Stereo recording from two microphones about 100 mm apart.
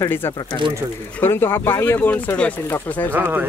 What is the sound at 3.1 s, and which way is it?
Speech, 20° right (ahead or behind).